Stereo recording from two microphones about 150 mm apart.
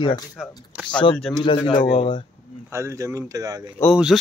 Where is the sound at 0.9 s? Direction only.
30° left (ahead or behind).